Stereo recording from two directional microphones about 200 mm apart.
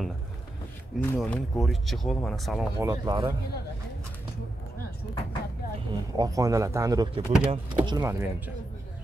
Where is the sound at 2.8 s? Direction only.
20° right (ahead or behind).